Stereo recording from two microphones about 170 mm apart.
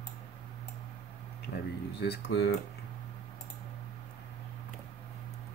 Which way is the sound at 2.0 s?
80° left.